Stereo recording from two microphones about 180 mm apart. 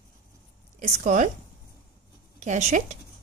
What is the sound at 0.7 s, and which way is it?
Speech, 45° right (ahead or behind).